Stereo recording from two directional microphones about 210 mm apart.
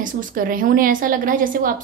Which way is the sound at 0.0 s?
40° right (ahead or behind).